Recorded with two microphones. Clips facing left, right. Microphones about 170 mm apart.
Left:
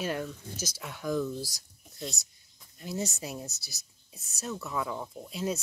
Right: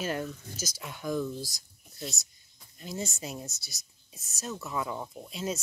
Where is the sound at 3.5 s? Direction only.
65° left (ahead or behind).